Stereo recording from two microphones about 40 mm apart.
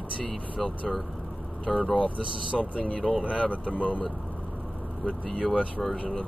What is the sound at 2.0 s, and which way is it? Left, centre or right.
Speech, left.